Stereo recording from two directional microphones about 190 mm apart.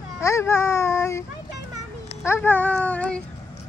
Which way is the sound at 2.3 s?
10° left (ahead or behind).